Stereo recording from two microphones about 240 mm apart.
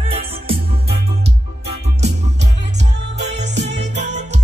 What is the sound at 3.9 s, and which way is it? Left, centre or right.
Music, right.